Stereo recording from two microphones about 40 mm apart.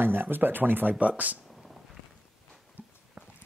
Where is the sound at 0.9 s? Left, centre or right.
Right.